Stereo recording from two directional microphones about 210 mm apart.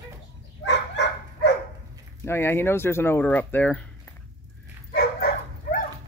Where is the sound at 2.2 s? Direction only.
10° left (ahead or behind).